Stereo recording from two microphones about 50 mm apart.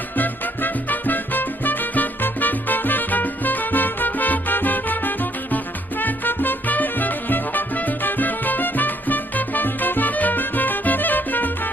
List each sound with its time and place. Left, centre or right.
0.2 s salsa music: left